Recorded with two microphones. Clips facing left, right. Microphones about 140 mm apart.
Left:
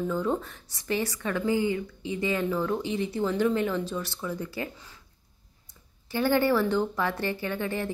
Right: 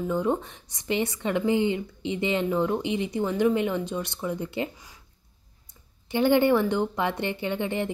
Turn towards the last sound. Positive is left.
turn(degrees=-20)  # may be behind; listen again after turning